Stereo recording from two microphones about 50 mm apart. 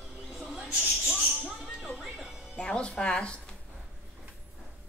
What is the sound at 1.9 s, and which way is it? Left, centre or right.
Music, centre.